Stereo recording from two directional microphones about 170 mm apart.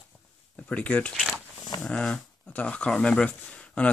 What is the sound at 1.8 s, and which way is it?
Speech, 5° left (ahead or behind).